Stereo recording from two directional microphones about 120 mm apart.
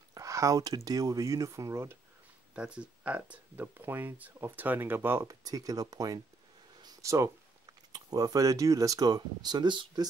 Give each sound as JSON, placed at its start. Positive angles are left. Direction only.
{"t": 0.1, "sound": "speech", "side_deg": -25}
{"t": 2.5, "sound": "speech", "side_deg": -10}
{"t": 6.8, "sound": "a sound", "side_deg": -30}
{"t": 7.9, "sound": "speech", "side_deg": -30}